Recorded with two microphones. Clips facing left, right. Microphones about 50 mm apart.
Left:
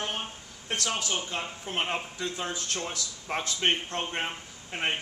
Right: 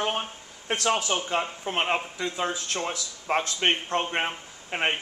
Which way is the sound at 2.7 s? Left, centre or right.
Right.